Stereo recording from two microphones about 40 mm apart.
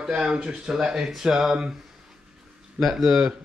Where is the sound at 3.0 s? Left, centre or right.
Centre.